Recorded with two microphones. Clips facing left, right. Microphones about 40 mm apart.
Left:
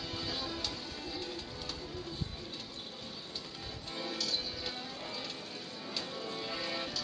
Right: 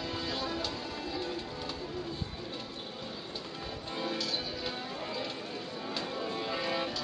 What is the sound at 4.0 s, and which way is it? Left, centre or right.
Music, centre.